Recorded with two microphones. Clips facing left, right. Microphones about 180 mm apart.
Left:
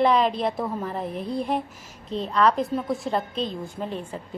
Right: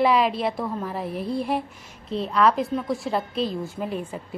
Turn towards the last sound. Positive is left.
turn(degrees=-10)  # may be behind; listen again after turning